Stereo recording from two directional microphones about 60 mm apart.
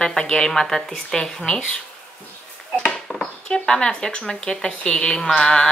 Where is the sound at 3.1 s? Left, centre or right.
Centre.